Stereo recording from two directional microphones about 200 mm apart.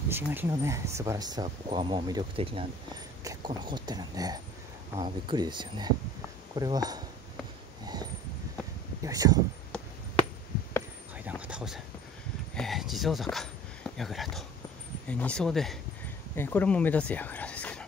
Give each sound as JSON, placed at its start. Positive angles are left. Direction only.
{"t": 0.1, "sound": "speech", "side_deg": -10}
{"t": 9.0, "sound": "speech", "side_deg": -15}
{"t": 11.2, "sound": "a sound", "side_deg": -5}
{"t": 15.0, "sound": "speech", "side_deg": 5}